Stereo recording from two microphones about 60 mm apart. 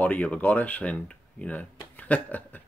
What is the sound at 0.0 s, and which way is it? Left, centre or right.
Speech, left.